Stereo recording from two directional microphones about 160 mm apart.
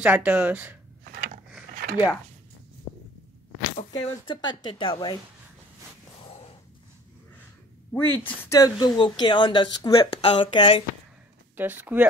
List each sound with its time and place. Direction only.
0.0 s speech: 10° right (ahead or behind)
1.1 s a sound: 65° right (ahead or behind)
2.9 s a sound: 45° left (ahead or behind)
3.9 s speech: 25° left (ahead or behind)
7.9 s speech: 15° left (ahead or behind)
10.1 s speech: 40° left (ahead or behind)
11.5 s speech: 10° right (ahead or behind)